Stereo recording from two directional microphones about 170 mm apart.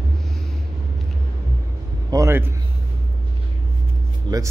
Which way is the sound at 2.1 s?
15° right (ahead or behind).